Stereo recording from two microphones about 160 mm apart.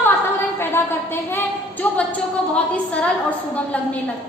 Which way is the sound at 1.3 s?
10° left (ahead or behind).